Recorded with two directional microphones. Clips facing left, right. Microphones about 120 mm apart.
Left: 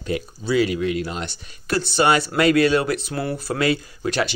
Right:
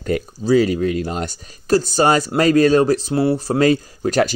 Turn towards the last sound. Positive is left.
turn(degrees=-40)  # may be behind; listen again after turning